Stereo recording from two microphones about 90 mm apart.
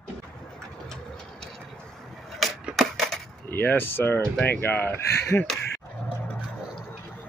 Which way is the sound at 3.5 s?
20° left (ahead or behind).